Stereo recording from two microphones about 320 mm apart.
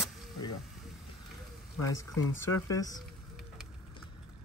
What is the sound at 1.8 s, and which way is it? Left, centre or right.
Speech, left.